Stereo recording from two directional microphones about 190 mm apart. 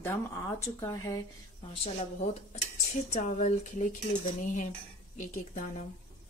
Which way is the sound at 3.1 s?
40° left (ahead or behind).